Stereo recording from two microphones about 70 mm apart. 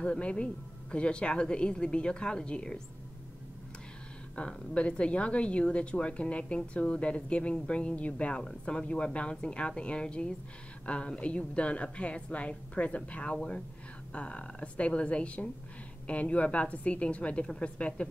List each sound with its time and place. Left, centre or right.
0.0 s speech: centre
4.4 s speech: centre